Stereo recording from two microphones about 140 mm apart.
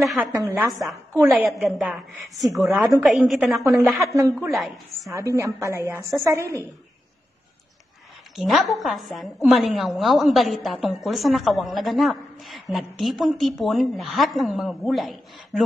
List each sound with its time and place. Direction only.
0.4 s a woman's voice: 15° right (ahead or behind)
0.7 s a woman's voice: centre (ahead or behind)
4.1 s a woman's voice: 20° right (ahead or behind)
4.6 s a woman's voice: centre (ahead or behind)
5.1 s a woman's voice: 20° right (ahead or behind)
8.4 s a woman's voice: centre (ahead or behind)